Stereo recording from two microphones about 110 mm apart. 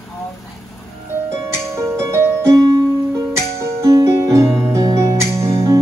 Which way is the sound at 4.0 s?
25° right (ahead or behind).